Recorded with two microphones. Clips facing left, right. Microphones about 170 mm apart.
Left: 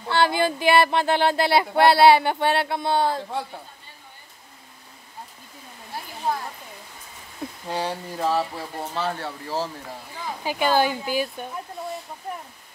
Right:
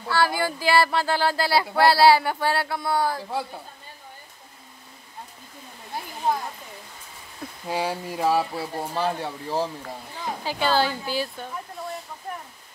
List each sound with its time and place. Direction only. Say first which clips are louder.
0.1 s speech: left 2 dB; 20° left (ahead or behind)
3.2 s a woman's voice: even; 5° right (ahead or behind)
7.6 s speech: right 2 dB; 5° right (ahead or behind)
10.4 s speech: left 2 dB; 15° left (ahead or behind)